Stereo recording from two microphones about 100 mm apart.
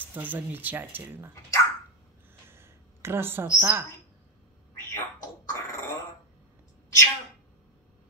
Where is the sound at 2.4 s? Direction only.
25° right (ahead or behind).